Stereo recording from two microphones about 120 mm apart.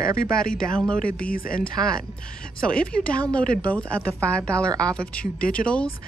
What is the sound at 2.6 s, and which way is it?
Speech, 10° left (ahead or behind).